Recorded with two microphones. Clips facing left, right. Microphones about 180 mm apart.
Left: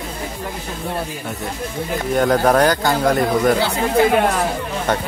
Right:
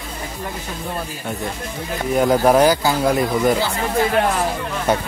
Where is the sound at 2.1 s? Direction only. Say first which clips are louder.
Right 1 dB; 5° right (ahead or behind).